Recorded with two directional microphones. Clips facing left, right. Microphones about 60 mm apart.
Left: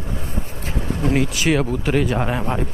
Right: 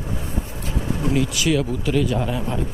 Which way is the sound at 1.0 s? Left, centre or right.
Left.